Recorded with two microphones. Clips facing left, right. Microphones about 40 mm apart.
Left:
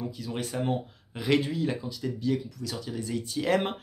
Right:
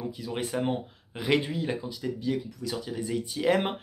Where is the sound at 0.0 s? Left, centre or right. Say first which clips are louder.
Right 1 dB; centre.